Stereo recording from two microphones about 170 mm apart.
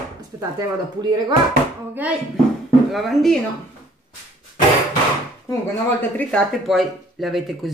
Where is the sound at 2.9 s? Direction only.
Centre (ahead or behind).